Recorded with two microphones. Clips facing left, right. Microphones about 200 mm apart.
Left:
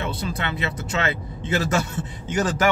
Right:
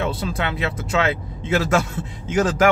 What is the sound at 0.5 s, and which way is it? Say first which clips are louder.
A man's voice: right 3 dB; 90° right.